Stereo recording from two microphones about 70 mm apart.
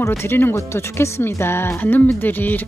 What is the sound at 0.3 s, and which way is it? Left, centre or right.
Speech, left.